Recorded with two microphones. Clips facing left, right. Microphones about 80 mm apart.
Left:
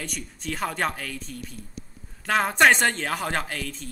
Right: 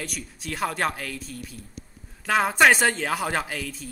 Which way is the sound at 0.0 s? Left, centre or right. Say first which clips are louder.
Even; centre.